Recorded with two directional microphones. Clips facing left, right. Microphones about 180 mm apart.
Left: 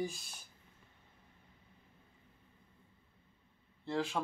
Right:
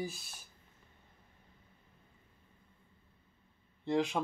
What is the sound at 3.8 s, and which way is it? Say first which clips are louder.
Speech: right 4 dB; 20° right (ahead or behind).